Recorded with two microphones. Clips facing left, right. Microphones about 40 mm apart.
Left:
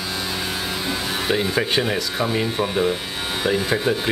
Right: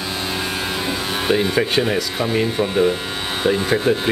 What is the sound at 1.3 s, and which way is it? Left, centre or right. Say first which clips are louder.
Speech: right 3 dB; centre.